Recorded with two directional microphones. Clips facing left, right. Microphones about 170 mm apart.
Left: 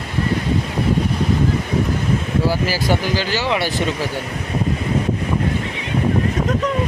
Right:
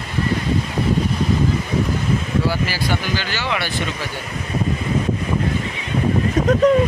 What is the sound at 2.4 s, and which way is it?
Speech, 40° left (ahead or behind).